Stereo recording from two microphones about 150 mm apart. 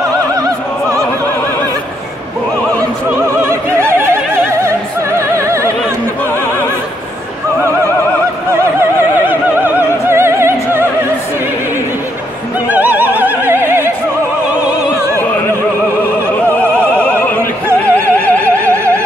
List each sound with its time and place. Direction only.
3.4 s opera: 15° right (ahead or behind)
9.3 s opera: 10° right (ahead or behind)
12.6 s opera: 10° right (ahead or behind)
16.5 s opera: 5° left (ahead or behind)